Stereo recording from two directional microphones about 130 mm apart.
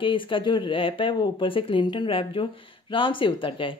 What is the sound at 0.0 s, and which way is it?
Speech, 40° left (ahead or behind).